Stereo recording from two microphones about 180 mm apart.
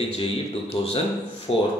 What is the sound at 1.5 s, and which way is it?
Speech, 30° left (ahead or behind).